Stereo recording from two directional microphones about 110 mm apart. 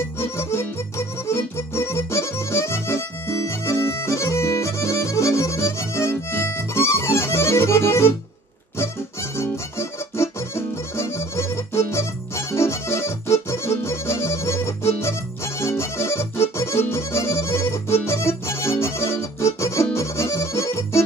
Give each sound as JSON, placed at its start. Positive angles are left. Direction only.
{"t": 0.2, "sound": "music", "side_deg": 25}
{"t": 9.4, "sound": "music", "side_deg": 25}